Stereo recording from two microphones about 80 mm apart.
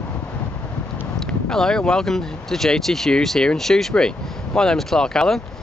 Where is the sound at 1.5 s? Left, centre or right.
Centre.